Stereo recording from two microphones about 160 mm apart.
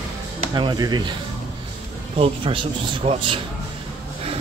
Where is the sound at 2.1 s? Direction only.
35° right (ahead or behind).